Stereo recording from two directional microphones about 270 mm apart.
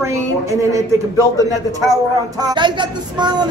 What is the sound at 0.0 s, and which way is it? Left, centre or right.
Speech, centre.